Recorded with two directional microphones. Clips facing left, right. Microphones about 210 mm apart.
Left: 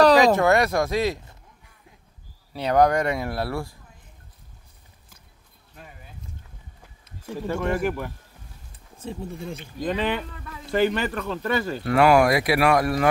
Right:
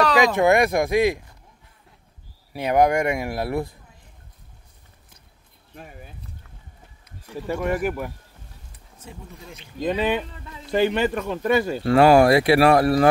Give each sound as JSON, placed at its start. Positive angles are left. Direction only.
{"t": 0.0, "sound": "a sound", "side_deg": 35}
{"t": 0.4, "sound": "speech", "side_deg": -15}
{"t": 2.5, "sound": "speech", "side_deg": -15}
{"t": 7.4, "sound": "speech", "side_deg": -10}
{"t": 8.7, "sound": "speech", "side_deg": 30}
{"t": 9.9, "sound": "speech", "side_deg": -20}
{"t": 11.8, "sound": "speech", "side_deg": -30}